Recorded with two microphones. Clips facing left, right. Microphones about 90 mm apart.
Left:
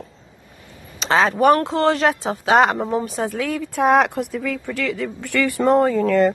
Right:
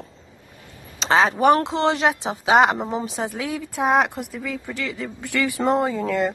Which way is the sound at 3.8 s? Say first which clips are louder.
Left 4 dB; centre (ahead or behind).